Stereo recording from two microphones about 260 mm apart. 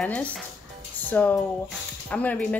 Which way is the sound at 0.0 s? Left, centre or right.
Centre.